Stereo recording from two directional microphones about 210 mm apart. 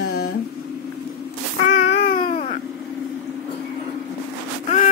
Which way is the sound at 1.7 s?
35° left (ahead or behind).